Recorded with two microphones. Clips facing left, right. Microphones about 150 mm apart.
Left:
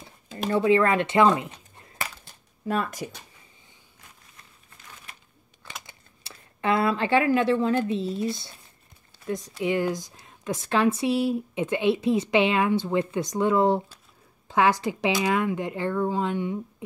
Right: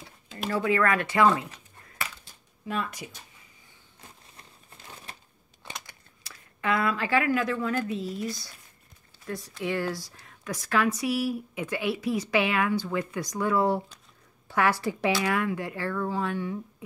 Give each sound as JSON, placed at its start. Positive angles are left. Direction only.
{"t": 0.5, "sound": "speech", "side_deg": 25}
{"t": 2.7, "sound": "speech", "side_deg": 45}
{"t": 4.6, "sound": "crumpling", "side_deg": -30}
{"t": 5.9, "sound": "speech", "side_deg": 30}